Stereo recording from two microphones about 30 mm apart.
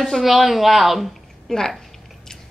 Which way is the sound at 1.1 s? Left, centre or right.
Centre.